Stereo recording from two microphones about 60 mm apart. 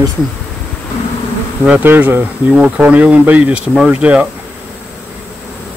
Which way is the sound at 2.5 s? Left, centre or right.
Right.